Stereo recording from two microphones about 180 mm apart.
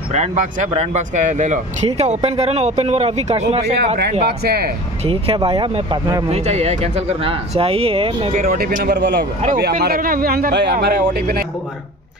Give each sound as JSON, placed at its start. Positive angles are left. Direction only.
{"t": 0.1, "sound": "speech", "side_deg": -40}
{"t": 4.3, "sound": "speech", "side_deg": -60}
{"t": 5.0, "sound": "speech", "side_deg": -30}
{"t": 8.3, "sound": "speech", "side_deg": -50}